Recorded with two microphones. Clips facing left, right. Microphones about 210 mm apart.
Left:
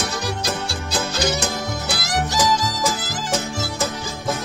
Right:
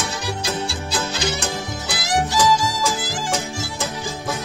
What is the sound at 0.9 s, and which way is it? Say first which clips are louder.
Music: left 3 dB; 40° left (ahead or behind).